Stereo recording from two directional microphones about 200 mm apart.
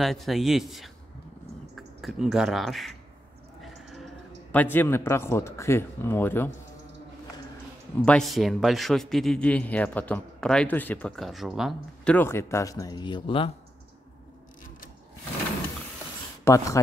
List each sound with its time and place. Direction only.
0.0 s a man's voice: centre (ahead or behind)
8.0 s a man's voice: 5° left (ahead or behind); by 13.5 s 25° left (ahead or behind)
16.4 s a man's voice: 15° left (ahead or behind)